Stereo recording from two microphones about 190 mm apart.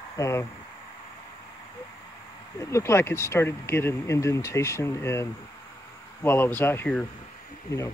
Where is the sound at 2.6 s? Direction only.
15° left (ahead or behind).